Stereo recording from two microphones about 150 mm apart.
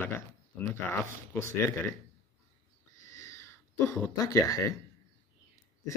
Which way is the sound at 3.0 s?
20° left (ahead or behind).